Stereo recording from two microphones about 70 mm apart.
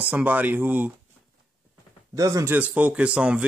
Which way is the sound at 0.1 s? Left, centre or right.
Right.